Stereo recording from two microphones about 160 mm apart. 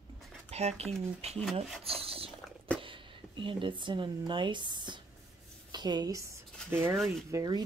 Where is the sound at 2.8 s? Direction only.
30° right (ahead or behind).